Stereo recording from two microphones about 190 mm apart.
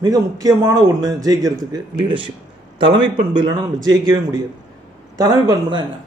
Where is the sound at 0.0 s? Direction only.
20° right (ahead or behind).